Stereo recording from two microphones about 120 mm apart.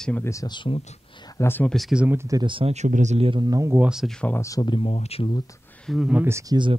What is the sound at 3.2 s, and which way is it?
Speech, 40° right (ahead or behind).